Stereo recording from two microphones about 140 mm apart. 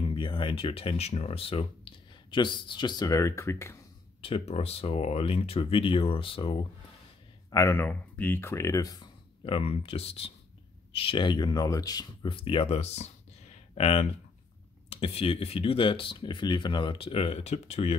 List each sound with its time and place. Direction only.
0.1 s speech: 35° left (ahead or behind); by 3.7 s 20° left (ahead or behind)
4.2 s speech: 45° left (ahead or behind)
7.5 s speech: 20° left (ahead or behind)
9.4 s speech: 40° left (ahead or behind)